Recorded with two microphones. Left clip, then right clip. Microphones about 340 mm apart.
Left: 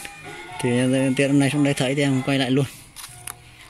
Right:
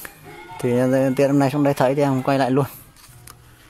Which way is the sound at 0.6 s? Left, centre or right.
Right.